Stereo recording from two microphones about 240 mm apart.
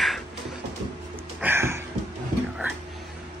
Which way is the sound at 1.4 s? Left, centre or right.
Centre.